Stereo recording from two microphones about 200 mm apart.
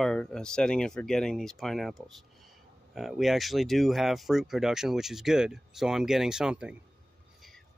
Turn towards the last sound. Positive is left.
turn(degrees=-5)  # may be behind; listen again after turning